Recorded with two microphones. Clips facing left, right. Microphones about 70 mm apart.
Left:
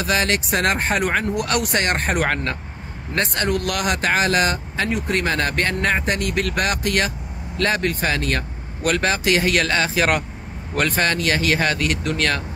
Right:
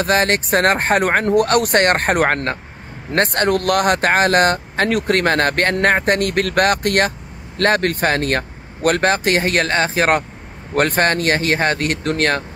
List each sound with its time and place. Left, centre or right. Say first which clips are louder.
0.0 s speech: right 4 dB; right